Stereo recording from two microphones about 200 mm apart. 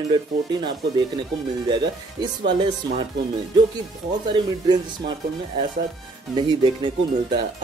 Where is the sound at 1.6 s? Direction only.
20° right (ahead or behind).